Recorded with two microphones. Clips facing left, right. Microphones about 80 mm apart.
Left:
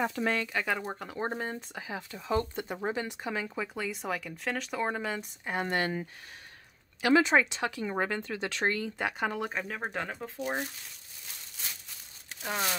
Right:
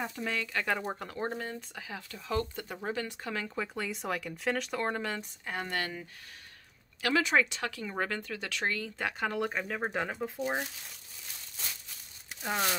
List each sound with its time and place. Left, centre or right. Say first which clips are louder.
0.0 s speech: left 6 dB; left
0.7 s speech: even; centre
1.1 s speech: left 2 dB; left
3.5 s speech: left 1 dB; centre
5.4 s speech: left 6 dB; left
8.9 s speech: left 1 dB; centre
12.4 s speech: right 1 dB; centre